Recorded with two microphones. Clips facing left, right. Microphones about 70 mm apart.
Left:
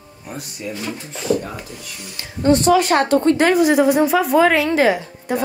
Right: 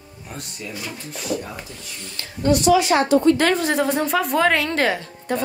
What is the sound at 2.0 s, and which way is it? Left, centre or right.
Speech, centre.